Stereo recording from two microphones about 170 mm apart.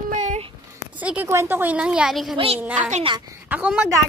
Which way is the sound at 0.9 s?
10° right (ahead or behind).